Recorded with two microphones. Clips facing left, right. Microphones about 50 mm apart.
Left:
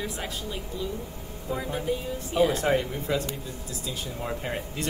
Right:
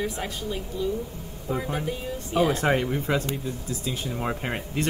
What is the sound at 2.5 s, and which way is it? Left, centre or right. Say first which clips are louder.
Speech: right 2 dB; right.